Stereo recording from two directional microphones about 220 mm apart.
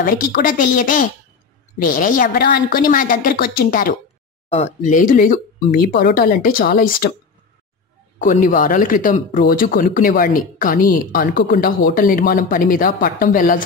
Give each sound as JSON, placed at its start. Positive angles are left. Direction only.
{"t": 0.0, "sound": "speech", "side_deg": 40}
{"t": 4.5, "sound": "speech", "side_deg": 30}
{"t": 8.2, "sound": "speech", "side_deg": 40}